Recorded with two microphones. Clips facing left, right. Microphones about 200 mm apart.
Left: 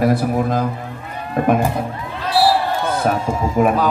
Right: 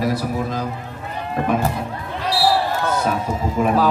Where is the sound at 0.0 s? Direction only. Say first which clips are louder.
Left 5 dB; 50° left (ahead or behind).